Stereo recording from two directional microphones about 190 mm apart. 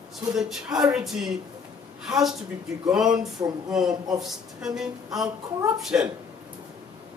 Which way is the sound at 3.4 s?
20° right (ahead or behind).